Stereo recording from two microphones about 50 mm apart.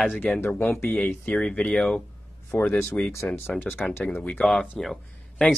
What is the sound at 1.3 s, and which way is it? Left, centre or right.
Speech, centre.